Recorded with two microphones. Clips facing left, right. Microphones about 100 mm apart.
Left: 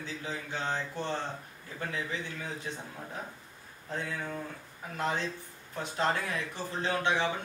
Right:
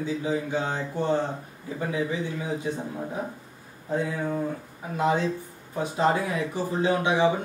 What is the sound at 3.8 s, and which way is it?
Speech, 15° right (ahead or behind).